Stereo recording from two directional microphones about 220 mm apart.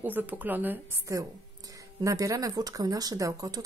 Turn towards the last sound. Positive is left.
turn(degrees=-15)  # may be behind; listen again after turning